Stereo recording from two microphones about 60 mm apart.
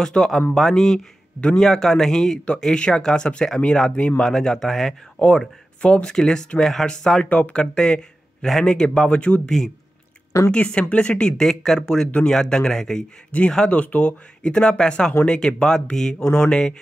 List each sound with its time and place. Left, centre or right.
0.0 s speech: centre
1.6 s speech: centre
5.8 s speech: centre
7.2 s speech: left
7.5 s speech: centre
10.5 s speech: centre